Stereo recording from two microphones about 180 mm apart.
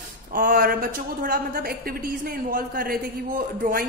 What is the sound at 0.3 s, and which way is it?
A woman's voice, 55° right (ahead or behind).